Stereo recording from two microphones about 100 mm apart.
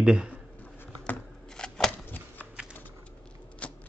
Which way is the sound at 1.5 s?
5° left (ahead or behind).